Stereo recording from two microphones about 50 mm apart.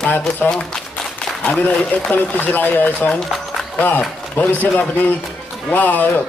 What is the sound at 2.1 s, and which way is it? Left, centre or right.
Speech, left.